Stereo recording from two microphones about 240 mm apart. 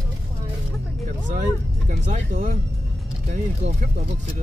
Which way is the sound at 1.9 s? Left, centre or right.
Right.